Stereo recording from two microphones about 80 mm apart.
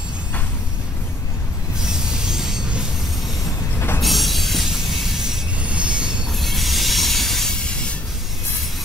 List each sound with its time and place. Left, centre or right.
1.8 s railroad car: centre
4.0 s train wheels squealing: centre
6.3 s train: centre